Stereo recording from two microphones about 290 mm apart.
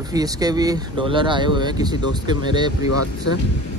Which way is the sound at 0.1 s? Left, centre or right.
Centre.